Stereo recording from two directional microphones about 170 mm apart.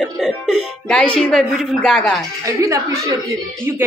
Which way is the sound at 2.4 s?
20° right (ahead or behind).